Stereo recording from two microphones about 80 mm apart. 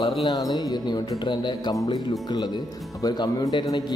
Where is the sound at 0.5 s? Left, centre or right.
Left.